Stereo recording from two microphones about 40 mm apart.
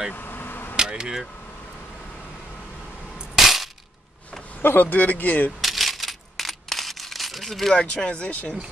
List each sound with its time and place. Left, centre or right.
0.1 s vehicle: left
0.7 s vehicle: centre
3.3 s a sound: centre
4.6 s a man's voice: left
5.6 s a sound: centre
7.7 s speech: left